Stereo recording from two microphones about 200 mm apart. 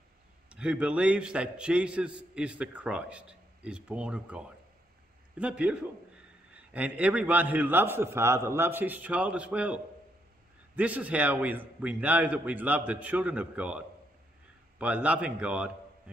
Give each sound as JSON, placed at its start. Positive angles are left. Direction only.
{"t": 0.5, "sound": "a man's voice", "side_deg": -5}
{"t": 10.8, "sound": "a man's voice", "side_deg": -5}